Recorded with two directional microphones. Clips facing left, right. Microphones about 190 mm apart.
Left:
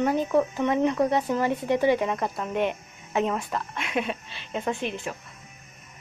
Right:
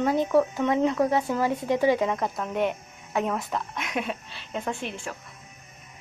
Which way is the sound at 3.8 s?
5° left (ahead or behind).